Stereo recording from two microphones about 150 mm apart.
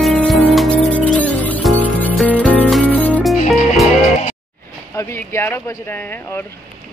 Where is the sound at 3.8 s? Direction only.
50° left (ahead or behind).